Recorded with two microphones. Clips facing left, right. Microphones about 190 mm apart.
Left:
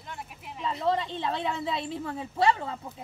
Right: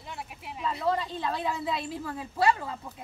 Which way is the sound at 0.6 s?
25° left (ahead or behind).